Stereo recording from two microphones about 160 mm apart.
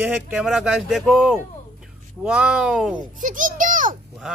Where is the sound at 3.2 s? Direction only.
55° right (ahead or behind).